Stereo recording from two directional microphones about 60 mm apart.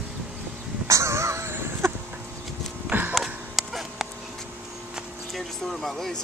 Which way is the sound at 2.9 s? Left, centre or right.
Right.